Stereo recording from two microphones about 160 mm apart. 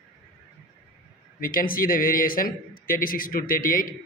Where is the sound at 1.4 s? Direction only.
60° left (ahead or behind).